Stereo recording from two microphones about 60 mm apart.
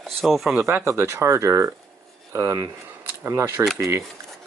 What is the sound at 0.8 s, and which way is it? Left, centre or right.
Speech, right.